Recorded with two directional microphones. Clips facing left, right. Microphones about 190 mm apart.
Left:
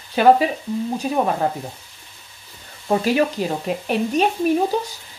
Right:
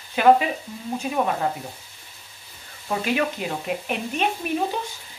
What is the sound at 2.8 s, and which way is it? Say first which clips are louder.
Speech: left 6 dB; 35° left (ahead or behind).